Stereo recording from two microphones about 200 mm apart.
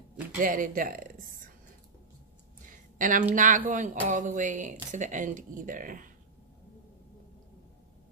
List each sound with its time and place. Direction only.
0.4 s speech: 40° right (ahead or behind)
2.6 s a sound: 40° right (ahead or behind)
3.3 s speech: 40° right (ahead or behind)